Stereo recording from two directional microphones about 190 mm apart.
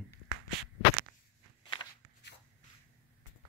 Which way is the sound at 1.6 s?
25° left (ahead or behind).